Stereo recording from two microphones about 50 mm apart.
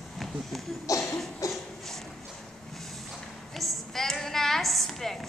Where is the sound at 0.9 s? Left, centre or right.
Left.